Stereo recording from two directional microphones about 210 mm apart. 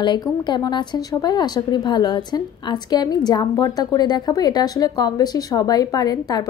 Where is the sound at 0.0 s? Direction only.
20° left (ahead or behind).